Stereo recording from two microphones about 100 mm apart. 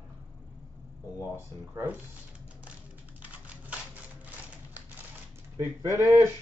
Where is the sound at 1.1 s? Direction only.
25° right (ahead or behind).